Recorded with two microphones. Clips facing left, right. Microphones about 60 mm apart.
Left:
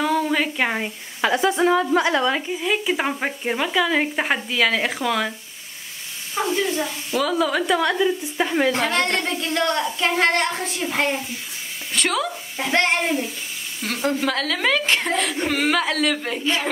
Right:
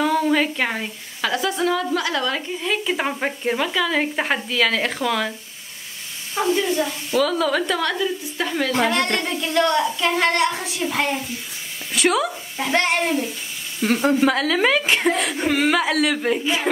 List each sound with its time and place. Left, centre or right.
0.0 s a sound: centre
0.7 s speech: left; by 5.3 s centre
6.3 s speech: centre
8.8 s speech: centre
10.4 s speech: centre
10.8 s speech: centre
11.9 s speech: centre
13.8 s a woman's voice: centre